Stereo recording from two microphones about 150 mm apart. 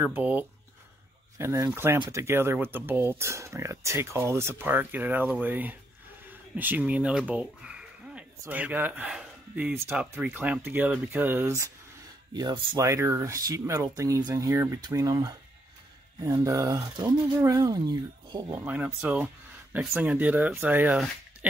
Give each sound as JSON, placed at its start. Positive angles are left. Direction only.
{"t": 0.0, "sound": "speech", "side_deg": -10}
{"t": 18.5, "sound": "speech", "side_deg": -10}